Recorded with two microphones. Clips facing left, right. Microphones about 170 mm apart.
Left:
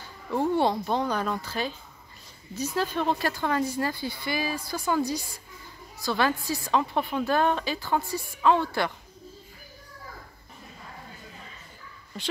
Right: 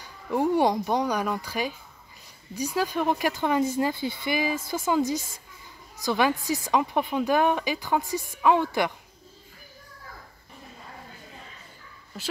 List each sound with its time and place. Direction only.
0.0 s a woman's voice: 15° right (ahead or behind)